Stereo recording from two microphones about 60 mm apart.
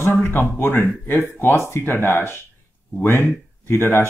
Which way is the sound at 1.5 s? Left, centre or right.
Left.